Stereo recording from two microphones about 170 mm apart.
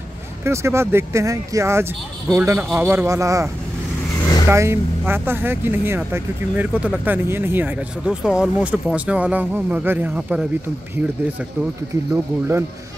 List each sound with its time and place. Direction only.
0.4 s speech: 15° right (ahead or behind)
4.5 s speech: 15° right (ahead or behind)
12.1 s speech: 15° right (ahead or behind)